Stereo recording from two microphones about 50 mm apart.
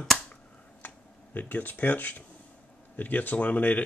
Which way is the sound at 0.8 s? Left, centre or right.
Left.